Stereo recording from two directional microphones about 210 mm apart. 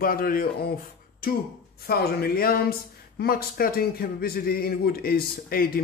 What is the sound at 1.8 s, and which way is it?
Speech, 45° left (ahead or behind).